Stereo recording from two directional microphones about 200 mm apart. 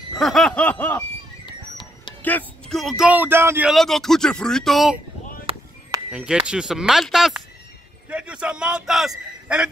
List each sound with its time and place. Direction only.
0.2 s snicker: centre (ahead or behind)
2.2 s speech: 5° left (ahead or behind); by 3.7 s 10° right (ahead or behind)
3.7 s speech: centre (ahead or behind)
5.5 s a sound: 25° right (ahead or behind)
6.1 s speech: 5° right (ahead or behind)